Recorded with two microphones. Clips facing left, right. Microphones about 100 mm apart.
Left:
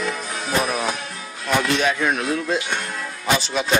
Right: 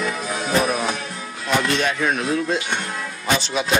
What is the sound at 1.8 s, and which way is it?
Speech, centre (ahead or behind).